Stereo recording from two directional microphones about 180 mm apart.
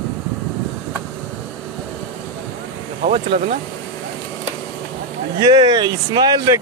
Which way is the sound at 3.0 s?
40° right (ahead or behind).